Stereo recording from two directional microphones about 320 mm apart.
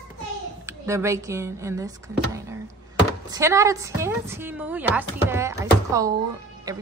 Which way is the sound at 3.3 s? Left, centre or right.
Centre.